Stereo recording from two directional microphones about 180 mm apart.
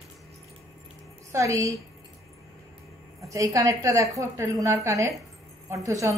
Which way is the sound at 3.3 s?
15° right (ahead or behind).